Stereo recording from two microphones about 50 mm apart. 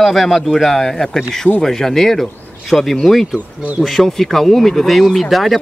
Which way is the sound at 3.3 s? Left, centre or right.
Right.